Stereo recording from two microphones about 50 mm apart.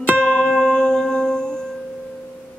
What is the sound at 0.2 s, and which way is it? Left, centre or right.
Music, centre.